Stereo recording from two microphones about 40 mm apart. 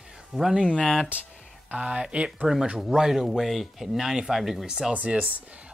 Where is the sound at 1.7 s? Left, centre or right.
Right.